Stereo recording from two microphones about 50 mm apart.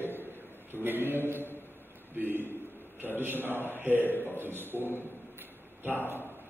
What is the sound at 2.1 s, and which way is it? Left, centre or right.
A man's voice, right.